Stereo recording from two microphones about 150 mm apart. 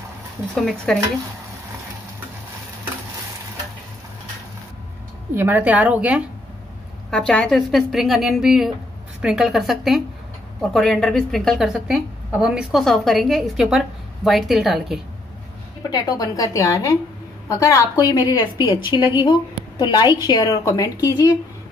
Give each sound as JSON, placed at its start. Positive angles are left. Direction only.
{"t": 0.6, "sound": "a woman's voice", "side_deg": 0}
{"t": 5.3, "sound": "a woman's voice", "side_deg": -15}
{"t": 7.1, "sound": "a woman's voice", "side_deg": 5}
{"t": 15.9, "sound": "a woman's voice", "side_deg": 25}